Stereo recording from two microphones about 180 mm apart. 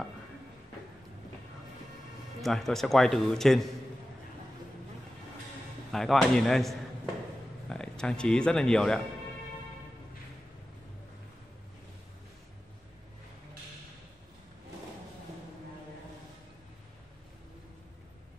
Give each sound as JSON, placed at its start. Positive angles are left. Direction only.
{"t": 2.4, "sound": "a man's voice", "side_deg": 0}
{"t": 5.9, "sound": "a man's voice", "side_deg": 0}